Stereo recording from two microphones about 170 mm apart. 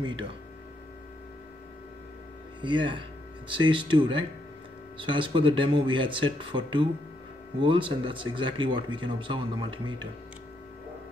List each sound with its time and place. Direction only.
0.0 s speech: 30° right (ahead or behind)
2.6 s speech: 30° right (ahead or behind)